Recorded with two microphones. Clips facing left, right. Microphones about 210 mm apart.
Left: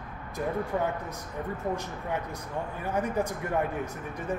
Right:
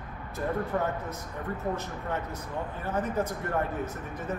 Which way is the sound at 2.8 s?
10° left (ahead or behind).